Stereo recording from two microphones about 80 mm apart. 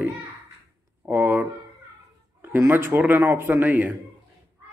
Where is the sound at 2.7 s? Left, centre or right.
Right.